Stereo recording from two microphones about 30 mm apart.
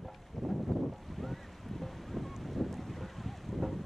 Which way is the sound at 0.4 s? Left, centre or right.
Centre.